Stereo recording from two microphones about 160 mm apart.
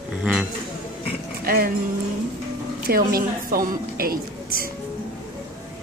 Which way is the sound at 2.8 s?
65° right (ahead or behind).